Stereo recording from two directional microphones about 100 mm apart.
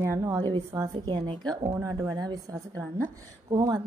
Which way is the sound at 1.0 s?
50° right (ahead or behind).